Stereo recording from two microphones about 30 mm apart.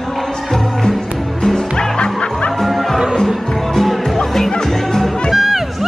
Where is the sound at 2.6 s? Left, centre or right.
Centre.